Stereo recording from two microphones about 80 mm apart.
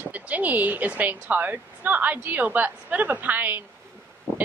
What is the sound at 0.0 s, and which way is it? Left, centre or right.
A woman's voice, centre.